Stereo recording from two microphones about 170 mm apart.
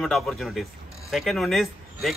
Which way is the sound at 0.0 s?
Centre (ahead or behind).